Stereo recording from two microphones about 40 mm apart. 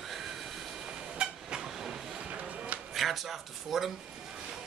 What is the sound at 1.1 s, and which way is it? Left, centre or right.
Vehicle, right.